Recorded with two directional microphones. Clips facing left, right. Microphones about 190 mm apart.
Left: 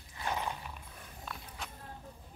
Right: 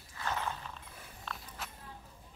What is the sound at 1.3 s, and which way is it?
Walk, 5° right (ahead or behind).